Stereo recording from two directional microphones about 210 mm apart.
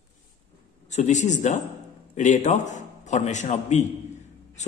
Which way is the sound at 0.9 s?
35° left (ahead or behind).